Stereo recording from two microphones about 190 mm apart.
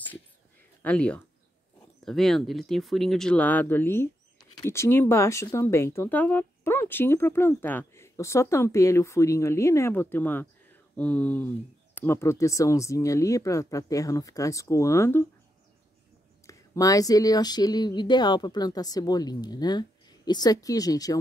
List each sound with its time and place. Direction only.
0.8 s speech: 5° left (ahead or behind)
16.4 s speech: 15° left (ahead or behind)